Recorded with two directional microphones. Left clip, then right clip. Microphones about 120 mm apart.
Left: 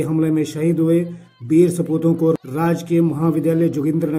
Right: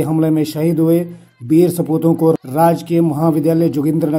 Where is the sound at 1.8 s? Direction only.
20° right (ahead or behind).